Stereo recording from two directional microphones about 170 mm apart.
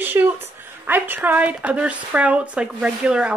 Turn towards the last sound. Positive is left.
turn(degrees=-5)  # may be behind; listen again after turning